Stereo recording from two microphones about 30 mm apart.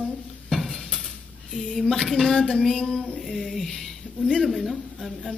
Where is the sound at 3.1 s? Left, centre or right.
Centre.